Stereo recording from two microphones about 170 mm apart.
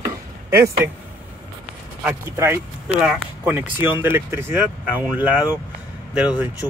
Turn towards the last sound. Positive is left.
turn(degrees=-5)  # may be behind; listen again after turning